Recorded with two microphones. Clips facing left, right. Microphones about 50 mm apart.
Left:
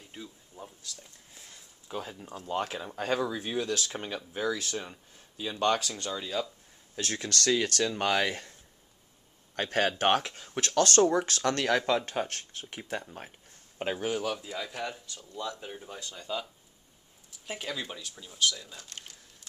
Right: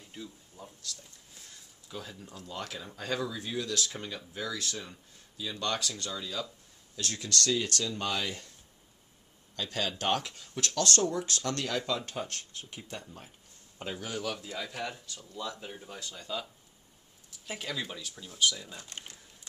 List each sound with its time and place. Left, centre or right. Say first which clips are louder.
0.1 s speech: even; centre
1.9 s speech: left 5 dB; left
9.6 s speech: left 6 dB; left
14.0 s speech: left 2 dB; centre
17.5 s speech: left 1 dB; centre
18.4 s speech: even; centre